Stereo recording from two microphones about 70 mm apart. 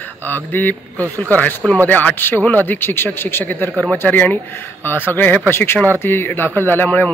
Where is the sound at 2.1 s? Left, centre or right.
Left.